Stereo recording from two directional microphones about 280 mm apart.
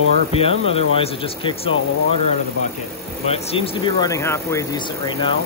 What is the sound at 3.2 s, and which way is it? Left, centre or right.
Speech, left.